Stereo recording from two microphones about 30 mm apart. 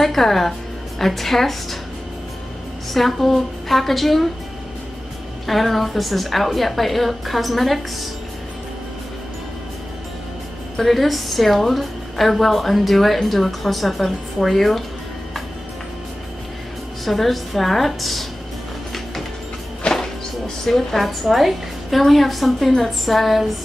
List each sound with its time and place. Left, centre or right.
0.0 s a woman's voice: centre
2.9 s a woman's voice: centre
5.5 s a woman's voice: centre
10.8 s a woman's voice: centre
17.0 s a woman's voice: centre
19.9 s a sound: centre
20.7 s a woman's voice: centre